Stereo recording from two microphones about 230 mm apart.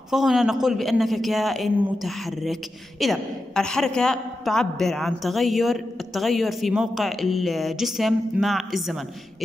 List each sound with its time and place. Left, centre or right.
0.1 s a woman's voice: centre